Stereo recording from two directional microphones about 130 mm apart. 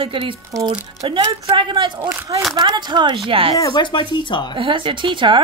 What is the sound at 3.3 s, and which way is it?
Music, 45° right (ahead or behind).